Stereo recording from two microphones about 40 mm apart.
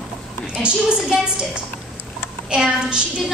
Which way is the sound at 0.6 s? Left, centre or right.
Right.